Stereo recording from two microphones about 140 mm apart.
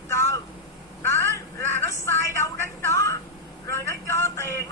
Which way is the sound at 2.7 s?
20° left (ahead or behind).